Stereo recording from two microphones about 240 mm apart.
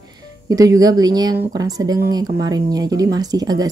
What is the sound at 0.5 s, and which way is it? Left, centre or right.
Speech, centre.